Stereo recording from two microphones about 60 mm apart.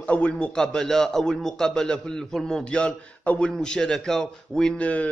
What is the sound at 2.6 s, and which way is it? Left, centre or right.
A man's voice, centre.